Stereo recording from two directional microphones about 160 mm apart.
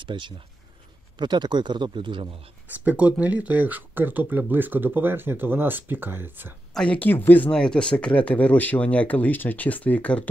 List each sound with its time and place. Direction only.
0.0 s speech: 30° right (ahead or behind)
2.8 s speech: 10° right (ahead or behind)
6.7 s speech: 5° left (ahead or behind)